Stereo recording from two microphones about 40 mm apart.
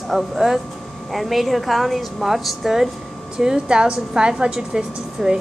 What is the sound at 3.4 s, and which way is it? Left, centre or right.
A woman's voice, centre.